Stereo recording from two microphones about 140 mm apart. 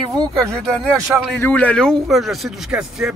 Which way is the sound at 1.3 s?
10° left (ahead or behind).